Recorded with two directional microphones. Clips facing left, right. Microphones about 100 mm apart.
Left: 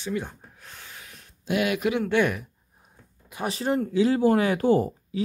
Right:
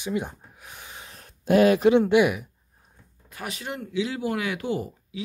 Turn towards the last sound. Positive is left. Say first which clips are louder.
# left 8 dB
turn(degrees=40)  # may be behind; listen again after turning